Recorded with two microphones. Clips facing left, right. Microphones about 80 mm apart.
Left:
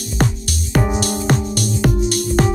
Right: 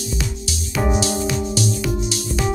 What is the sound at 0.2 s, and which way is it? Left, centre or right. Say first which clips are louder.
Music: left 7 dB; left.